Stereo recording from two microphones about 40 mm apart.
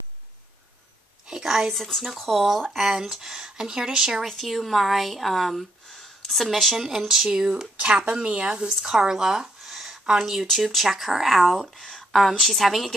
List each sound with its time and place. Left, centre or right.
1.2 s a woman's voice: centre
1.8 s speech: centre
4.2 s speech: centre
6.8 s speech: centre
9.6 s a sound: centre
10.7 s speech: centre